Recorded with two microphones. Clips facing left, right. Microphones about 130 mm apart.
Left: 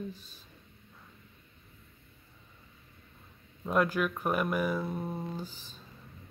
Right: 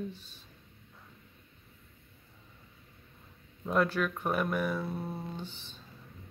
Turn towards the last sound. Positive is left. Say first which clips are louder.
# right 1 dB
turn(degrees=40)  # may be behind; listen again after turning